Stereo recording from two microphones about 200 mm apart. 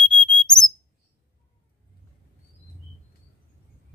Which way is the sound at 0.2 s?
5° left (ahead or behind).